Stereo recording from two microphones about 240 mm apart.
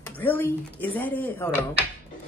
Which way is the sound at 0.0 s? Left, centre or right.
Centre.